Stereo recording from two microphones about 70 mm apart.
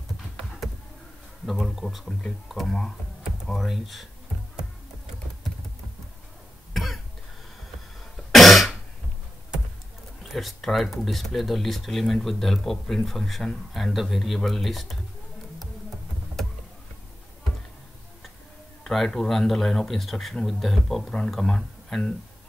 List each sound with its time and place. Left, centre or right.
1.4 s speech: centre
6.7 s cough: centre
8.3 s cough: centre
10.2 s speech: centre
18.9 s speech: centre